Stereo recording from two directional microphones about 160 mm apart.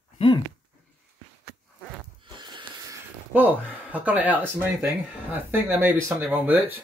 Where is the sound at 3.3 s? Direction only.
10° right (ahead or behind).